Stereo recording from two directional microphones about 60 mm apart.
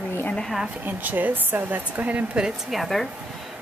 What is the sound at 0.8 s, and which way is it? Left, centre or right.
Speech, right.